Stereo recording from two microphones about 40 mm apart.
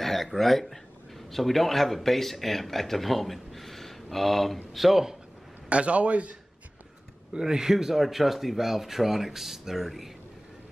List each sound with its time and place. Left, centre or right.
0.0 s speech: centre
5.7 s a man's voice: right
7.3 s speech: centre